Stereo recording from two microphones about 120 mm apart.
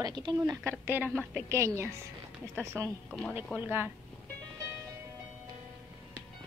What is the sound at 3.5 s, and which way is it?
Speech, 15° right (ahead or behind).